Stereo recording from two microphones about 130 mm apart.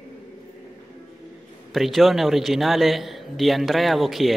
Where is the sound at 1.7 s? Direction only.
Centre (ahead or behind).